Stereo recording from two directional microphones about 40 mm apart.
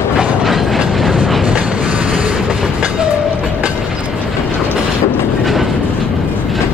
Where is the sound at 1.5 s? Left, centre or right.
Right.